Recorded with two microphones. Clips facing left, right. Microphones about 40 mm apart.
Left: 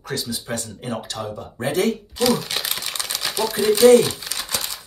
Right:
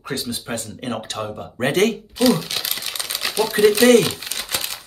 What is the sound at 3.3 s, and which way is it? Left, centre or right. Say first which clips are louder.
Speech: right 7 dB; right.